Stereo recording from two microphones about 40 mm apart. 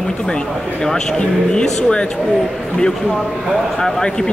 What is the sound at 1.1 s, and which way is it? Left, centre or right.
Speech, left.